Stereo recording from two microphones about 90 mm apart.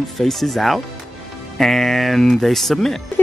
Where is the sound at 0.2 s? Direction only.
5° left (ahead or behind).